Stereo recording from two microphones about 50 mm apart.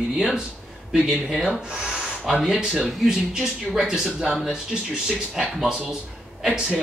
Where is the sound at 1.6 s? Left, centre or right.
Centre.